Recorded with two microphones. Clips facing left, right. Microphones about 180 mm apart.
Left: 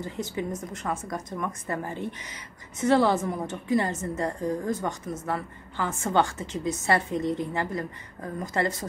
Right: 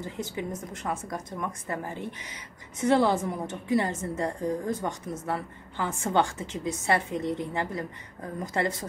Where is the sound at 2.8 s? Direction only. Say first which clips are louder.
Left 1 dB; 15° right (ahead or behind).